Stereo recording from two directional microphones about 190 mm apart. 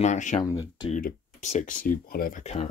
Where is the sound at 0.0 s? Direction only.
40° left (ahead or behind).